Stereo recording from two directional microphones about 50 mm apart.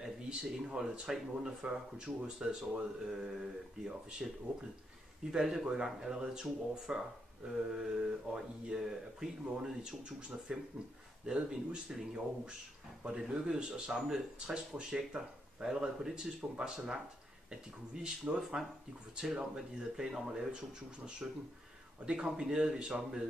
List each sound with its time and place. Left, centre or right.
0.0 s speech: centre
5.3 s speech: centre
18.0 s speech: right
19.1 s speech: centre
21.2 s speech: right